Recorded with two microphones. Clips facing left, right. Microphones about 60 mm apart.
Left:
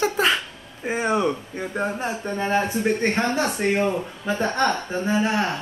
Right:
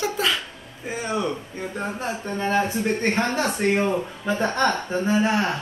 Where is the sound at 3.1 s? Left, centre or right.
Centre.